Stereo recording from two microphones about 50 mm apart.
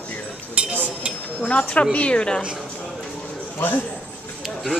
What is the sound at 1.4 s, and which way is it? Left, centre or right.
Speech, left.